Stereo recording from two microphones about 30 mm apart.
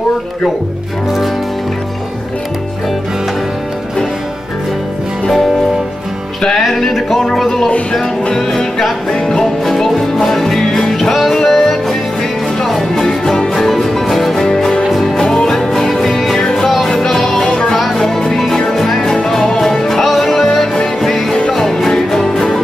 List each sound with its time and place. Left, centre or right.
6.6 s music: centre
13.2 s music: centre
16.9 s music: centre